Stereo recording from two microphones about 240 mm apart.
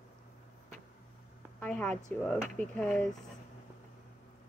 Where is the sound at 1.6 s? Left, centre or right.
Centre.